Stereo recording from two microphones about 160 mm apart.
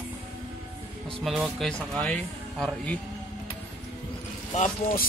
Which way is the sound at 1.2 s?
5° right (ahead or behind).